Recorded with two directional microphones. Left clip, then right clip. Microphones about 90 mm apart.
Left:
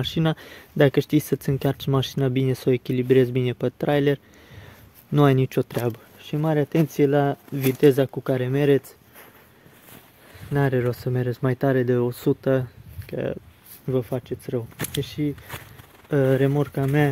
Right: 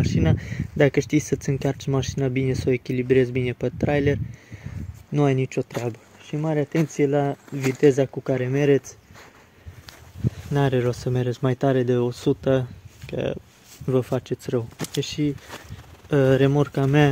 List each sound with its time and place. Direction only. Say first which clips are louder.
0.0 s speech: even; 40° left (ahead or behind)
0.4 s speech: left 1 dB; 20° left (ahead or behind)
5.1 s speech: left 3 dB; 65° left (ahead or behind)
6.3 s speech: left 2 dB; 55° left (ahead or behind)
7.8 s speech: even; 30° left (ahead or behind)
8.2 s speech: even; 10° left (ahead or behind)
10.5 s speech: even; 5° right (ahead or behind); by 12.4 s 15° left (ahead or behind)
12.4 s speech: right 1 dB; 5° right (ahead or behind)
13.8 s speech: right 2 dB; 50° right (ahead or behind)
14.8 s speech: right 2 dB; 25° right (ahead or behind)